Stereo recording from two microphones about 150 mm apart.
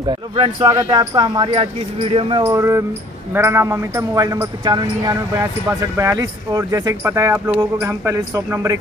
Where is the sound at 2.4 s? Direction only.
20° right (ahead or behind).